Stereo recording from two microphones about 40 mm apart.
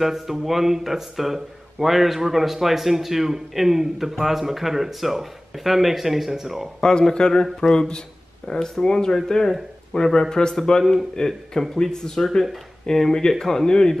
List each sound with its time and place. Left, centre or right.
0.0 s speech: centre
6.8 s speech: centre
8.5 s speech: centre
11.2 s speech: left